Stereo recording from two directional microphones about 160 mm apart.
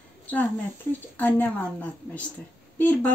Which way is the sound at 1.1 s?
10° left (ahead or behind).